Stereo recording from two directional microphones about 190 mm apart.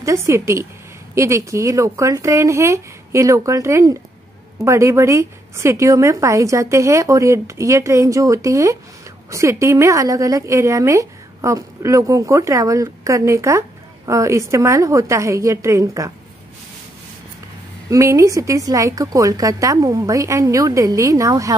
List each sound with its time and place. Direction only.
0.0 s a woman's voice: 15° right (ahead or behind)
17.8 s a woman's voice: 15° right (ahead or behind)